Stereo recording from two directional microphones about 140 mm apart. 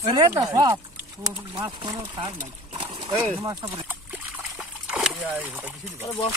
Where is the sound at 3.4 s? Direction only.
25° right (ahead or behind).